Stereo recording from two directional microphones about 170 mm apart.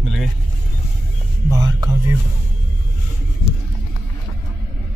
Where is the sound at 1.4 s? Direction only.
20° right (ahead or behind).